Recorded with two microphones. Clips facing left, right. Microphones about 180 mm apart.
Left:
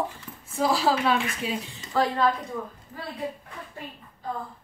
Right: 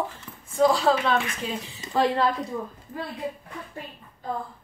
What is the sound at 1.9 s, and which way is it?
Speech, 20° right (ahead or behind).